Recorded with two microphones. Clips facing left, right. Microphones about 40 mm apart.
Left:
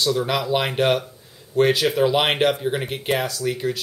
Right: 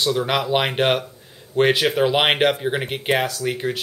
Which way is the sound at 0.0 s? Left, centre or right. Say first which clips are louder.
Right 1 dB; right.